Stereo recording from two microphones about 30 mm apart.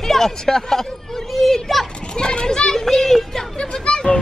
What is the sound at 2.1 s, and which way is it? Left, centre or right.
Speech, left.